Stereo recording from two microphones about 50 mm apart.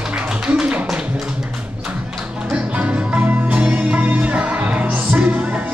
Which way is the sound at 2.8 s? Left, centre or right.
Right.